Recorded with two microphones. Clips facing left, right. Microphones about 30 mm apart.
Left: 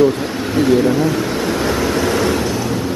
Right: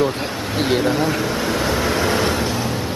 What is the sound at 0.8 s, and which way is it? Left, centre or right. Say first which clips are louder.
Speech: left 3 dB; right.